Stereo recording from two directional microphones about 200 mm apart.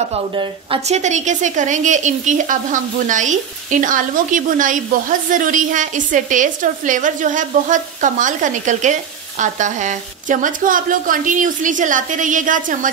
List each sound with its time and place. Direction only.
0.4 s a woman's voice: 30° right (ahead or behind)